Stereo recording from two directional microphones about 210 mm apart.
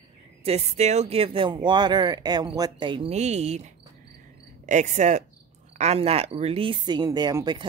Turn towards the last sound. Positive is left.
turn(degrees=-20)  # may be behind; listen again after turning